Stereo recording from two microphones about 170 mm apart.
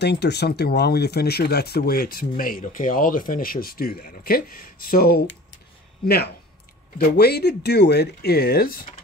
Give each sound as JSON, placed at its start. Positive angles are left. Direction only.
{"t": 0.0, "sound": "speech", "side_deg": 80}
{"t": 6.0, "sound": "speech", "side_deg": 70}